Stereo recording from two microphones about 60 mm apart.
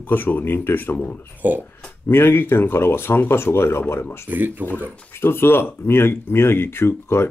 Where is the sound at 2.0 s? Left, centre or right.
Left.